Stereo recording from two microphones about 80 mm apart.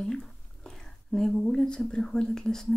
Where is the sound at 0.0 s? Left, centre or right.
Centre.